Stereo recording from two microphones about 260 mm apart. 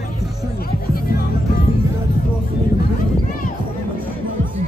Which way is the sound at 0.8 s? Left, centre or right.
Left.